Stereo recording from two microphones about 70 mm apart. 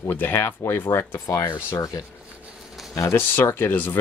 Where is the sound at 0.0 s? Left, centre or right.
Left.